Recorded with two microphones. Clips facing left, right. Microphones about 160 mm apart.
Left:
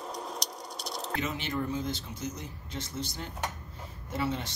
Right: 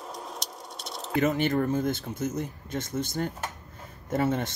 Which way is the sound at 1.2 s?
50° right (ahead or behind).